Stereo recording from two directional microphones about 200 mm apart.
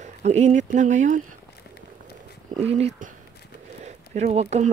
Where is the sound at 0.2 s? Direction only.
35° right (ahead or behind).